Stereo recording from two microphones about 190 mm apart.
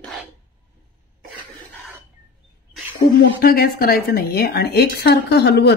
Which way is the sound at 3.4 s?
50° left (ahead or behind).